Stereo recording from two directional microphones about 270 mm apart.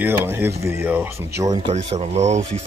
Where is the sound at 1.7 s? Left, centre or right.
Right.